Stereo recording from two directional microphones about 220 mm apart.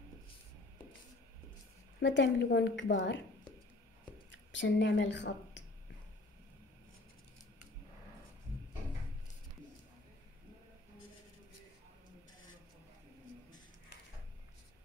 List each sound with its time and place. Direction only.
2.0 s a woman's voice: 55° left (ahead or behind)
4.5 s a woman's voice: 55° left (ahead or behind)